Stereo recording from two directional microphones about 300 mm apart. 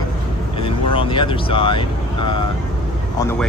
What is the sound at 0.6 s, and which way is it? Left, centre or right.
Speech, centre.